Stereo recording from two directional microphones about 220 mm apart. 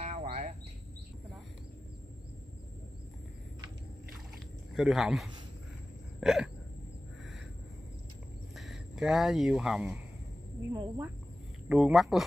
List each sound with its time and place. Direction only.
0.0 s bird: 30° right (ahead or behind)
4.7 s speech: centre (ahead or behind)
8.5 s speech: centre (ahead or behind)
10.7 s speech: 20° right (ahead or behind)
11.7 s speech: centre (ahead or behind)